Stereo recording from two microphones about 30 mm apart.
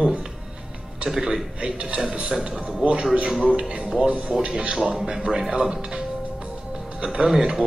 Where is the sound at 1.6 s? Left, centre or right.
Right.